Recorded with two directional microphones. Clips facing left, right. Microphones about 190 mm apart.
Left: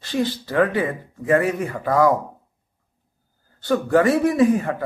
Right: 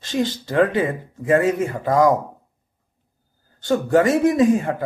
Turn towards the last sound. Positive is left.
turn(degrees=-25)  # may be behind; listen again after turning